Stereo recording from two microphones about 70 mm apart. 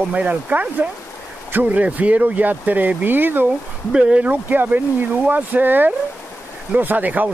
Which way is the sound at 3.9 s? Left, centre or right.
Centre.